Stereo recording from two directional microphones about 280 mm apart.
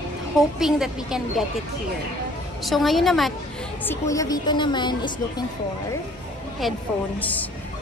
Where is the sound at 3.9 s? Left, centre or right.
Centre.